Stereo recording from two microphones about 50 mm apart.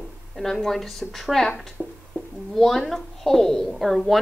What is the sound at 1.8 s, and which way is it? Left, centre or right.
Music, centre.